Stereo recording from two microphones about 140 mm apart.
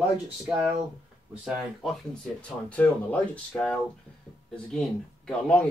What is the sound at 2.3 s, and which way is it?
Speech, 10° left (ahead or behind).